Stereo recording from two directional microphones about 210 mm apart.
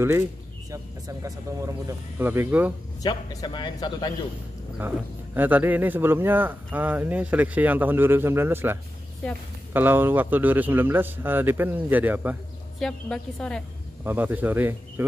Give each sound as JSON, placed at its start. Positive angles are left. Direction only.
{"t": 0.7, "sound": "music", "side_deg": -15}
{"t": 1.9, "sound": "speech", "side_deg": -10}
{"t": 3.0, "sound": "speech", "side_deg": 20}
{"t": 4.7, "sound": "speech", "side_deg": -10}
{"t": 9.2, "sound": "a woman's voice", "side_deg": 5}
{"t": 9.7, "sound": "speech", "side_deg": -10}
{"t": 12.7, "sound": "a woman's voice", "side_deg": 5}
{"t": 14.0, "sound": "speech", "side_deg": -10}